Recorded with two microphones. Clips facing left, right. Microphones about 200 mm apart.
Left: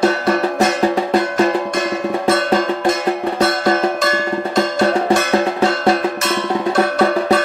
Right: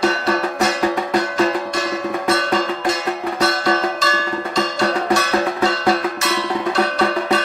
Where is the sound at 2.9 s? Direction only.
50° left (ahead or behind).